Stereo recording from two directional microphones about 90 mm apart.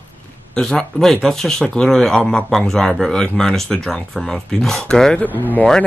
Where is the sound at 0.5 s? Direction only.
5° left (ahead or behind).